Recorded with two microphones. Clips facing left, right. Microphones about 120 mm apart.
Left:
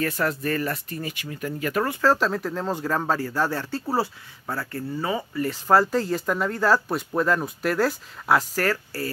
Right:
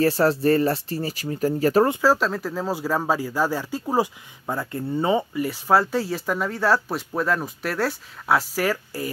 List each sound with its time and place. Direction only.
0.0 s speech: 30° right (ahead or behind)
2.0 s speech: 5° right (ahead or behind); by 5.4 s 25° right (ahead or behind)
5.4 s speech: 5° right (ahead or behind)